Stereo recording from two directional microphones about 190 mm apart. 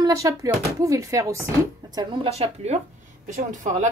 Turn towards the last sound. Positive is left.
turn(degrees=-40)  # may be behind; listen again after turning